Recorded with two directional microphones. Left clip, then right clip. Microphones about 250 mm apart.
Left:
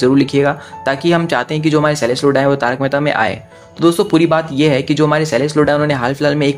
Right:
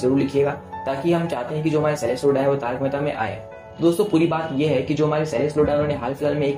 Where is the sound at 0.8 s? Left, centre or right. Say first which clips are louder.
Left 8 dB; centre.